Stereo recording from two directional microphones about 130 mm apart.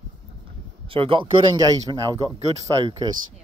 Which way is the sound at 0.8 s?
45° right (ahead or behind).